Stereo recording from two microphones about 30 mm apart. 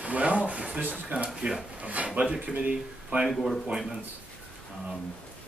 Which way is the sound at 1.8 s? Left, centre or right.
Right.